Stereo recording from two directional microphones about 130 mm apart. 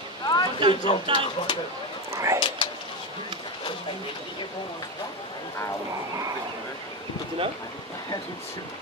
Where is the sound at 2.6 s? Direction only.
40° left (ahead or behind).